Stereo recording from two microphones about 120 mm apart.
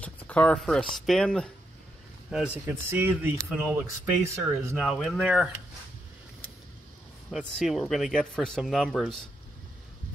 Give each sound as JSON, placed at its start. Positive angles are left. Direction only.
{"t": 0.0, "sound": "speech", "side_deg": 10}
{"t": 2.3, "sound": "speech", "side_deg": -10}
{"t": 4.8, "sound": "speech", "side_deg": 0}
{"t": 7.2, "sound": "speech", "side_deg": 0}